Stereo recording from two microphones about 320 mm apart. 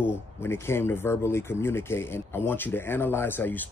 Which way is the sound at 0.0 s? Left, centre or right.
Centre.